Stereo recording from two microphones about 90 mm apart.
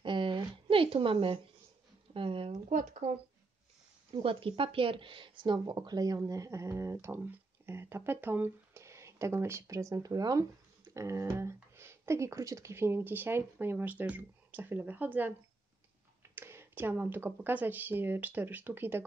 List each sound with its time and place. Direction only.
0.0 s a sound: 65° right (ahead or behind); by 1.4 s 80° right
2.1 s speech: 90° right
4.2 s speech: 90° right; by 5.6 s 65° right (ahead or behind)
5.7 s speech: 45° right (ahead or behind); by 19.0 s 25° right (ahead or behind)